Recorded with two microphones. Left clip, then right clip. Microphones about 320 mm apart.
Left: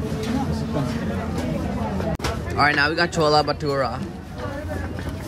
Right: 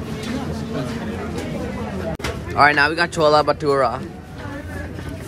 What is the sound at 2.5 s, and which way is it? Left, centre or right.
Speech, centre.